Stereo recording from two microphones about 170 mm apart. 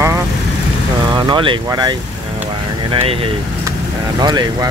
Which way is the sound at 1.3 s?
30° right (ahead or behind).